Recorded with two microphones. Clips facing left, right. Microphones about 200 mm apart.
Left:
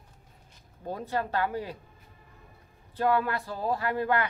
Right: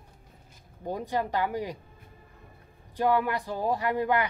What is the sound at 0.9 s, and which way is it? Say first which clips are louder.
Speech: right 2 dB; 15° right (ahead or behind).